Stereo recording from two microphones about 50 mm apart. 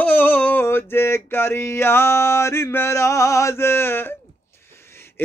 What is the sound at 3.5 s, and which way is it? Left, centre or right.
Male singing, left.